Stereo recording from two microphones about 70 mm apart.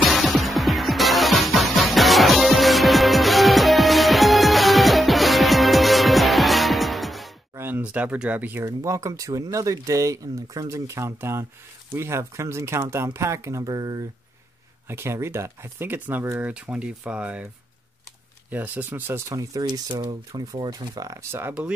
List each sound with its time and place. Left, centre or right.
0.0 s music: centre
7.5 s a sound: right
7.8 s speech: right
8.5 s speech: right
11.0 s speech: right
14.9 s speech: right; by 17.5 s centre
18.5 s speech: right
19.3 s speech: right
21.2 s speech: right